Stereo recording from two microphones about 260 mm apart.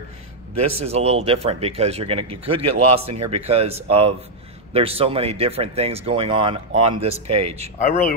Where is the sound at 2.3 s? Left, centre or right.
Right.